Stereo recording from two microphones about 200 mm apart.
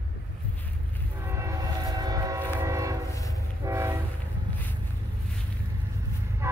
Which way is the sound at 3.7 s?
15° right (ahead or behind).